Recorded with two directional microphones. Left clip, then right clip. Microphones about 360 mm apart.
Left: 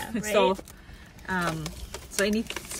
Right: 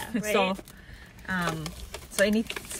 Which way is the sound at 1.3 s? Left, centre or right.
Centre.